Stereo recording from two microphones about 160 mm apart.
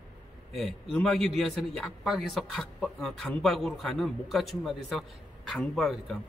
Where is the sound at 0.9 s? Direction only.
5° left (ahead or behind).